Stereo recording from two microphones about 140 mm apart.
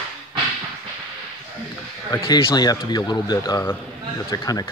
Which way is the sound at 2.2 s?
40° left (ahead or behind).